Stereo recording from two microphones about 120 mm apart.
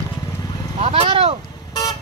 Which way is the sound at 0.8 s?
50° right (ahead or behind).